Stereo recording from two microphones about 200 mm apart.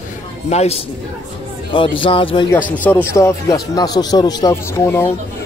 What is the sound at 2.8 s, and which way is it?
A man's voice, 10° left (ahead or behind).